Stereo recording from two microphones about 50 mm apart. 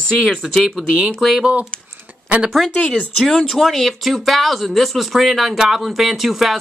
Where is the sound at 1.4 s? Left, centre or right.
Right.